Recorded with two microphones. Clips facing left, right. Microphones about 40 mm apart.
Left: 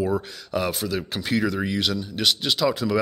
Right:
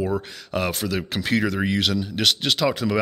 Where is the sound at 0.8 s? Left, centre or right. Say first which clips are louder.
Right 2 dB; right.